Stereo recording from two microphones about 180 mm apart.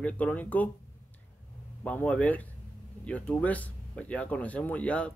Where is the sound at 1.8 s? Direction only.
10° left (ahead or behind).